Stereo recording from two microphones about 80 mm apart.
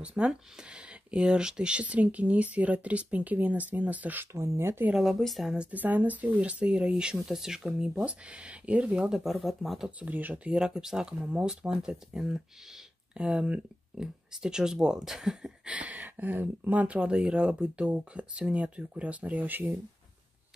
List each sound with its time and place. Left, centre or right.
0.0 s speech: centre; by 4.8 s right
4.9 s speech: centre
5.6 s speech: centre
9.2 s speech: centre
9.8 s speech: centre